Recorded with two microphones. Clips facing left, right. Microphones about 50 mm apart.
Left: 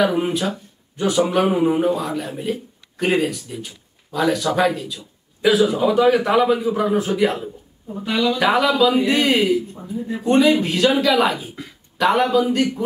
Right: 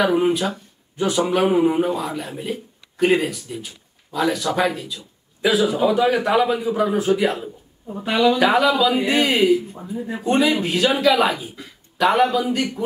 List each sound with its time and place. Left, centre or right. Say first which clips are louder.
0.1 s a man's voice: right 2 dB; centre
8.0 s speech: right 3 dB; centre
8.4 s a man's voice: even; centre
9.9 s speech: left 2 dB; right
10.2 s a man's voice: left 3 dB; centre